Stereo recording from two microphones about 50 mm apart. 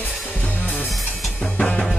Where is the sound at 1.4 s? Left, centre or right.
Centre.